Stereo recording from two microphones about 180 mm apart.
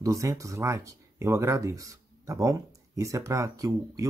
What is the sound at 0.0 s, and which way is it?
Speech, 15° right (ahead or behind).